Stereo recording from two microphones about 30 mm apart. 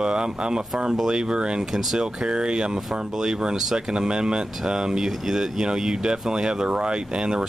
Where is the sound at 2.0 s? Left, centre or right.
Right.